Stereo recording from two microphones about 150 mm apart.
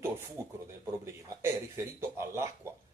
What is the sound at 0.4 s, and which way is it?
A man's voice, 20° right (ahead or behind).